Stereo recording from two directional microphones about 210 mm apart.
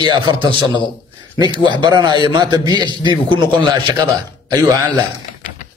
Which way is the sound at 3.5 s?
20° right (ahead or behind).